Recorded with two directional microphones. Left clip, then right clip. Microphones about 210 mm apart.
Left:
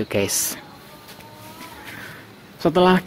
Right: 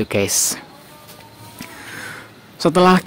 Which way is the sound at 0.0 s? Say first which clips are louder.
Right 4 dB; 15° right (ahead or behind).